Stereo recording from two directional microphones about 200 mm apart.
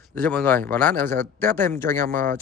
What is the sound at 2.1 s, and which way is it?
Speech, 40° right (ahead or behind).